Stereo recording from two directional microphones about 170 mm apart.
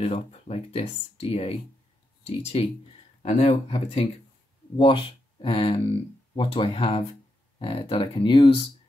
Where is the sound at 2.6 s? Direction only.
35° left (ahead or behind).